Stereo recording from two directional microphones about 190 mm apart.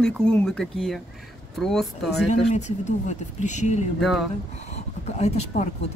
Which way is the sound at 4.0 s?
Centre (ahead or behind).